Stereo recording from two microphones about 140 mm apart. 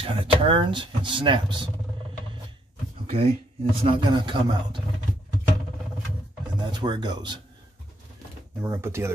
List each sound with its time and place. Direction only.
0.0 s speech: 40° right (ahead or behind)
3.1 s speech: 40° right (ahead or behind)
6.6 s speech: 35° right (ahead or behind)
8.6 s speech: 20° right (ahead or behind)